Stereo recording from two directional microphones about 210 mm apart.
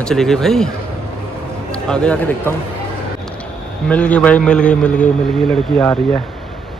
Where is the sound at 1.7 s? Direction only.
5° left (ahead or behind).